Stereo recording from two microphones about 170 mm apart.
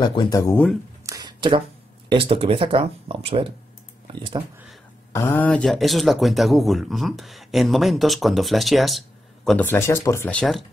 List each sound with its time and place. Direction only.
0.0 s speech: 25° left (ahead or behind)
1.0 s a sound: 25° right (ahead or behind)
2.0 s speech: 35° right (ahead or behind)
5.1 s speech: 15° left (ahead or behind)
9.7 s speech: 15° left (ahead or behind)